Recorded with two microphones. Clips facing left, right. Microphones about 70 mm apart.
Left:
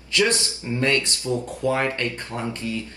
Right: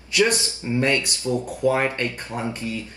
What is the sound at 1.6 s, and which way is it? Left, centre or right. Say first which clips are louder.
Speech: right 3 dB; centre.